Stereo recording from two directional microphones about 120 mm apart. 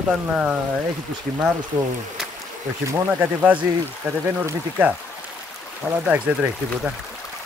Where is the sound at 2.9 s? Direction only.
15° right (ahead or behind).